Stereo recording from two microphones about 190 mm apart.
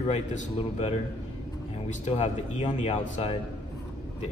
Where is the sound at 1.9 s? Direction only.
35° left (ahead or behind).